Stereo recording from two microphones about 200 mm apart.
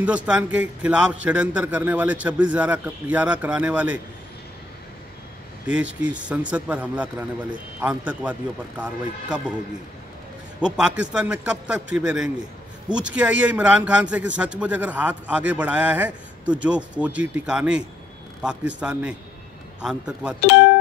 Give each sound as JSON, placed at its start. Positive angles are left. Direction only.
{"t": 0.0, "sound": "a man's voice", "side_deg": -5}
{"t": 5.7, "sound": "a man's voice", "side_deg": -5}
{"t": 10.6, "sound": "a man's voice", "side_deg": -5}